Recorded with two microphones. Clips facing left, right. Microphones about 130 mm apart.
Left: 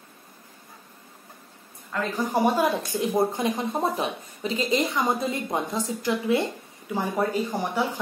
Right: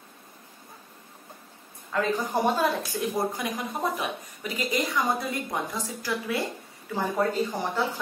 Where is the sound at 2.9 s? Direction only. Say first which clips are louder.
Left 4 dB; 25° left (ahead or behind).